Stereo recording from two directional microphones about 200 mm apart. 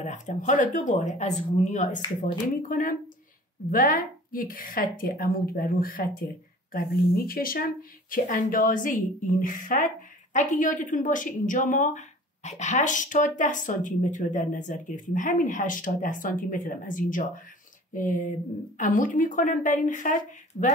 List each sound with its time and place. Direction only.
0.0 s a woman's voice: 35° left (ahead or behind)